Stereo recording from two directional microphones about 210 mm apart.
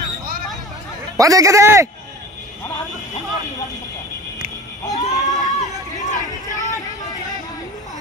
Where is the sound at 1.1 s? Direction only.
15° right (ahead or behind).